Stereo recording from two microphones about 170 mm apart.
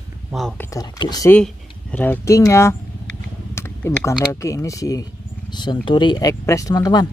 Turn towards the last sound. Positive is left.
turn(degrees=25)  # may be behind; listen again after turning